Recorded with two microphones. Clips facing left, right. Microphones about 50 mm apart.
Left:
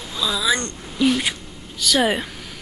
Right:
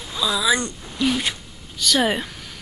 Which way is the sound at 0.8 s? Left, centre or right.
Centre.